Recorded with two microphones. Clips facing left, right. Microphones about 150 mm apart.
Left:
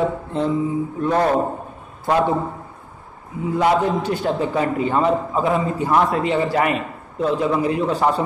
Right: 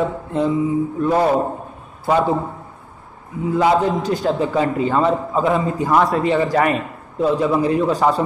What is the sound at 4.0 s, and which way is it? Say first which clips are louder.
Speech: right 2 dB; 40° right (ahead or behind).